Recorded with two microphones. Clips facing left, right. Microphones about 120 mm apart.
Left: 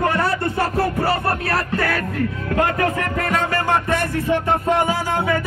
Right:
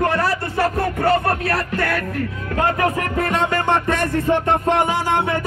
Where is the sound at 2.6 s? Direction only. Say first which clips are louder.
Right 1 dB; 25° right (ahead or behind).